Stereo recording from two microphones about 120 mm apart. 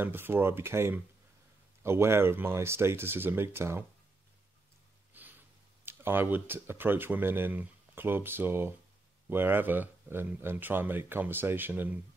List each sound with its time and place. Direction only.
0.0 s speech: 20° right (ahead or behind)
5.1 s a sound: 15° right (ahead or behind)
5.9 s speech: 15° right (ahead or behind)